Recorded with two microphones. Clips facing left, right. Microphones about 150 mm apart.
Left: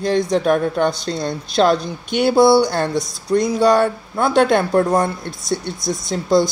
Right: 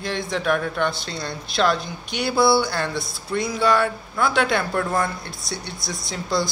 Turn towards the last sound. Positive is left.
turn(degrees=45)  # may be behind; listen again after turning